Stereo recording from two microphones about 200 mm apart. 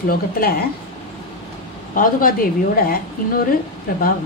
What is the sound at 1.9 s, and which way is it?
A woman's voice, 45° left (ahead or behind).